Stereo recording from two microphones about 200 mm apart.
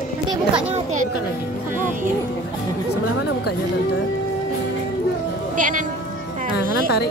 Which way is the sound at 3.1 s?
60° left (ahead or behind).